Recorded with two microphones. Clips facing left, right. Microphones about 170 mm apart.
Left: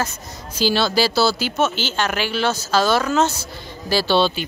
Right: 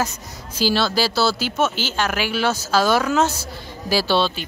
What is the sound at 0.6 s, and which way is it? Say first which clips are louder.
Speech: left 1 dB; 5° right (ahead or behind).